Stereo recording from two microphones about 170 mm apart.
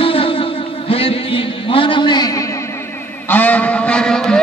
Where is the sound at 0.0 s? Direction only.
35° left (ahead or behind).